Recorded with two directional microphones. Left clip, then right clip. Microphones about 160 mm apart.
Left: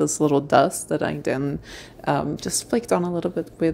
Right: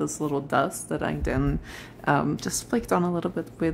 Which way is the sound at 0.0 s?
25° left (ahead or behind).